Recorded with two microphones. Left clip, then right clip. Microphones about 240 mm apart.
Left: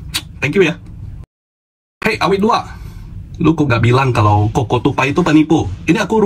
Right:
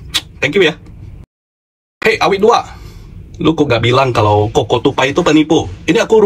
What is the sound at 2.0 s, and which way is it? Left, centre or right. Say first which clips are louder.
Speech: right 4 dB; centre.